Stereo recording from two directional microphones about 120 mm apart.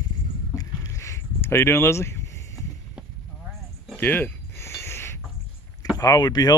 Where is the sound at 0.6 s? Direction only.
25° left (ahead or behind).